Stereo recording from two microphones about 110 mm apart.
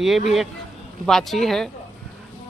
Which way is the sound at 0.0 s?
Centre (ahead or behind).